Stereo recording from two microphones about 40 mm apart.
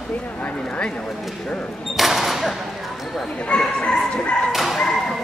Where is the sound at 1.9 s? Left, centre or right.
Centre.